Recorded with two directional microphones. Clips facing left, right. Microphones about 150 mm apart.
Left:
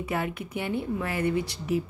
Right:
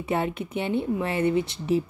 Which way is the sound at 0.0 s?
25° right (ahead or behind).